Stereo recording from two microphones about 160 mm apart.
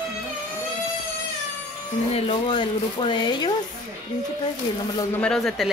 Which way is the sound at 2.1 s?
35° left (ahead or behind).